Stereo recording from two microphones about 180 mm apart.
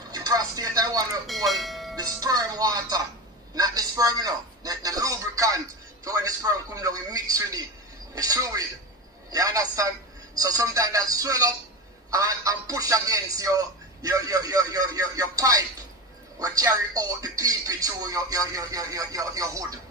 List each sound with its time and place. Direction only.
0.1 s chopping: 20° right (ahead or behind)
1.2 s speech: centre (ahead or behind)
2.0 s a man's voice: 20° right (ahead or behind)